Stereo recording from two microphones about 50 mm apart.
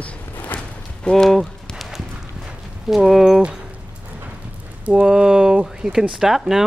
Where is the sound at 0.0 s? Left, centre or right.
Left.